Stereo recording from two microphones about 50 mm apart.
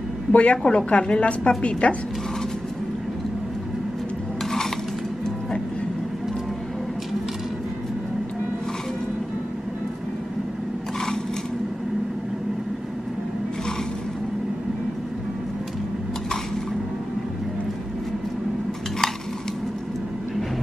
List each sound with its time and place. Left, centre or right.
0.3 s a woman's voice: left